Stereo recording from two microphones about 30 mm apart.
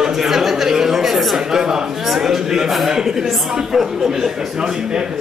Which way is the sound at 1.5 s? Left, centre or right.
Centre.